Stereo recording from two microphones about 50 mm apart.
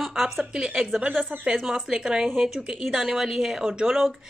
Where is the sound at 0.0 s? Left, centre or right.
Centre.